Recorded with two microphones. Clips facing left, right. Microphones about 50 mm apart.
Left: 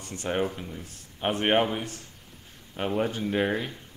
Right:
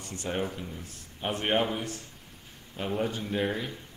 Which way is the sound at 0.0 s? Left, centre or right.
Left.